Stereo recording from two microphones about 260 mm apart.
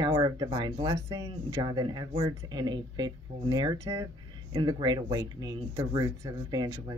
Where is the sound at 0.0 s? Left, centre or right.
Centre.